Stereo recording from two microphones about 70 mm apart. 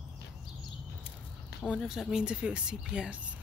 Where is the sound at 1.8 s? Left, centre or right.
Centre.